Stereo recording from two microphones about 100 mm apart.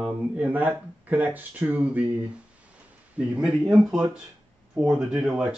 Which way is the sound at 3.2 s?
10° right (ahead or behind).